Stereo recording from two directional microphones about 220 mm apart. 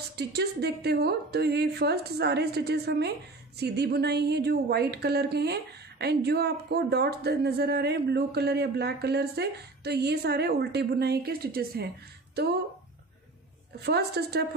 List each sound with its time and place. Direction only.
0.1 s a woman's voice: 50° right (ahead or behind)
13.7 s a woman's voice: 45° right (ahead or behind)